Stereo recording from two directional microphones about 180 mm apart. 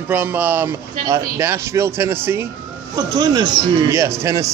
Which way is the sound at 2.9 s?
25° right (ahead or behind).